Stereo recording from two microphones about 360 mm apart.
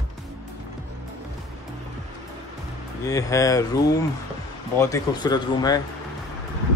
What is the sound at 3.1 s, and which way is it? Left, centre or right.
Speech, centre.